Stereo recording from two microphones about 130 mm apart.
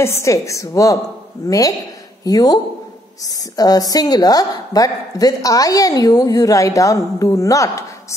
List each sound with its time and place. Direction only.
0.0 s a woman's voice: 20° left (ahead or behind)